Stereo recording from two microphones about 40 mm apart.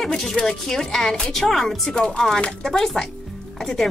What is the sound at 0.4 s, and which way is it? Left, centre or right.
Speech, centre.